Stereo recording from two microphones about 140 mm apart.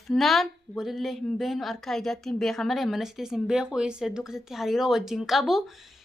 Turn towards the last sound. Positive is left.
turn(degrees=0)  # may be behind; listen again after turning